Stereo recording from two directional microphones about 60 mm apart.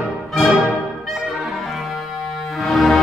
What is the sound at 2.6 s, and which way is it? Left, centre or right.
Music, centre.